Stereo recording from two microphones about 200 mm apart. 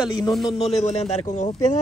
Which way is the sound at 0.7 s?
35° left (ahead or behind).